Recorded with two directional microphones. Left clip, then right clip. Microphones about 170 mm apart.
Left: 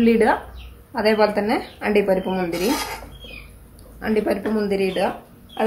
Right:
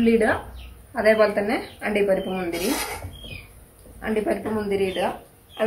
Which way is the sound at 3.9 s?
55° left (ahead or behind).